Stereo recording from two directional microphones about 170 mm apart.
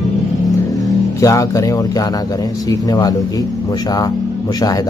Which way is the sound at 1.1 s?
20° left (ahead or behind).